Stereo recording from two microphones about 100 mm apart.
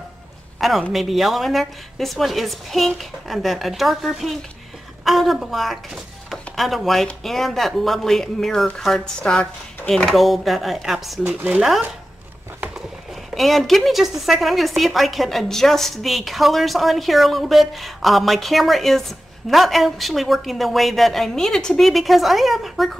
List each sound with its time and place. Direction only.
0.6 s a woman's voice: centre (ahead or behind)
13.3 s a woman's voice: centre (ahead or behind)